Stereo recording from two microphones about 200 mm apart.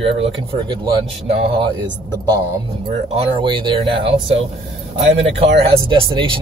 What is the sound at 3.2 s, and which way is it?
Speech, 25° right (ahead or behind).